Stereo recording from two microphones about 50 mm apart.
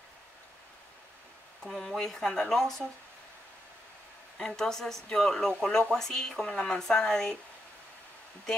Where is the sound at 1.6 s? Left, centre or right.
Centre.